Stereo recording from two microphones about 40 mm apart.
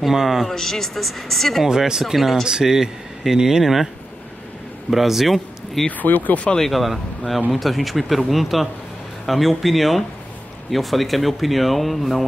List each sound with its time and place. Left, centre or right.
0.0 s speech: centre
0.5 s speech: centre
1.6 s speech: centre
2.4 s speech: centre
4.9 s speech: centre
5.9 s speech: left
6.6 s speech: centre